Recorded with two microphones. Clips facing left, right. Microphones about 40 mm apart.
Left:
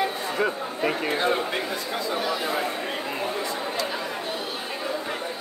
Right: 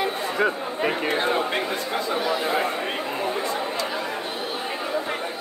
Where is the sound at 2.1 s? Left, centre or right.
Centre.